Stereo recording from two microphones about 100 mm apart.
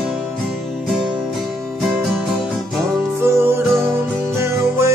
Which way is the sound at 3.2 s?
25° right (ahead or behind).